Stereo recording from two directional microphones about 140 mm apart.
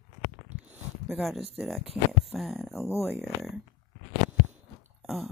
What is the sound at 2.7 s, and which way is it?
Speech, 20° left (ahead or behind).